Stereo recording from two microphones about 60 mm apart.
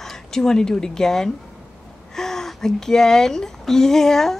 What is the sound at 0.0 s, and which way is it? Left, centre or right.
A woman's voice, centre.